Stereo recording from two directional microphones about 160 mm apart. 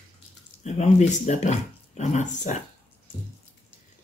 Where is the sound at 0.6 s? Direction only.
45° left (ahead or behind).